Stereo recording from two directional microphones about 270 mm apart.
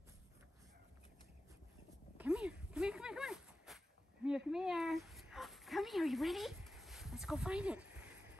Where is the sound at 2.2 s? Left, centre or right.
Centre.